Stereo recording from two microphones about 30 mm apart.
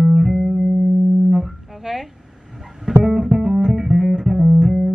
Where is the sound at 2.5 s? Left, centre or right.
Centre.